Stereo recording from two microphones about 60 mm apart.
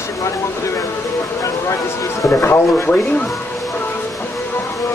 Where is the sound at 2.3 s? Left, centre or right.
Left.